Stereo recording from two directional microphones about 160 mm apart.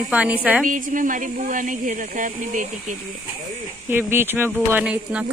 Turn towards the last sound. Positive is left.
turn(degrees=-5)  # may be behind; listen again after turning